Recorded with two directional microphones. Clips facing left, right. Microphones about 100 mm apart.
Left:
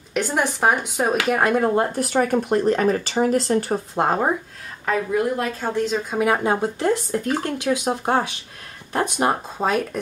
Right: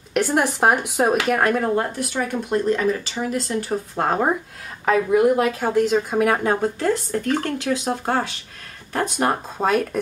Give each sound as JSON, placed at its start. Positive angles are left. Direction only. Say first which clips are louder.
{"t": 0.1, "sound": "speech", "louder": "right 2 dB", "side_deg": -5}
{"t": 2.0, "sound": "speech", "louder": "left 5 dB", "side_deg": 45}
{"t": 3.9, "sound": "speech", "louder": "left 1 dB", "side_deg": 10}
{"t": 4.8, "sound": "speech", "louder": "right 5 dB", "side_deg": -10}
{"t": 6.1, "sound": "speech", "louder": "right 1 dB", "side_deg": 5}
{"t": 9.6, "sound": "speech", "louder": "right 3 dB", "side_deg": 0}